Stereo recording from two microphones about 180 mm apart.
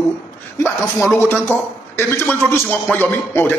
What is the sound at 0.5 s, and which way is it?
A man's voice, 15° left (ahead or behind).